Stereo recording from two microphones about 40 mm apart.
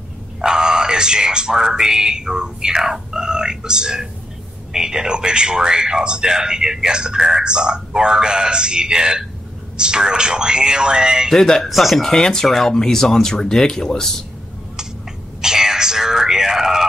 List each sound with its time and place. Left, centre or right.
0.4 s a man's voice: centre
11.3 s speech: centre
12.1 s speech: centre
15.4 s a sound: centre